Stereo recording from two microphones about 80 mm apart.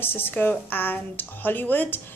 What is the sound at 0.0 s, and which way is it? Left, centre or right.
Speech, left.